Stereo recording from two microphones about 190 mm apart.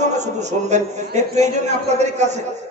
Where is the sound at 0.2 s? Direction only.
40° right (ahead or behind).